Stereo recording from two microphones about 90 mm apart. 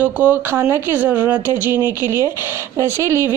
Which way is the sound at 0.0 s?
20° right (ahead or behind).